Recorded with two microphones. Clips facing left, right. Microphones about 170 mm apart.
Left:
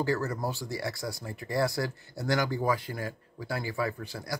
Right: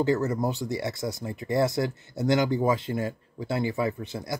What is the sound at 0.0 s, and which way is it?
Speech, 20° right (ahead or behind).